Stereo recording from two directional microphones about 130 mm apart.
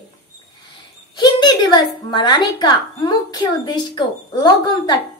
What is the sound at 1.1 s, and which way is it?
Speech, 35° left (ahead or behind).